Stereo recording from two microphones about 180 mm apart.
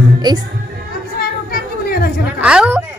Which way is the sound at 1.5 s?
55° left (ahead or behind).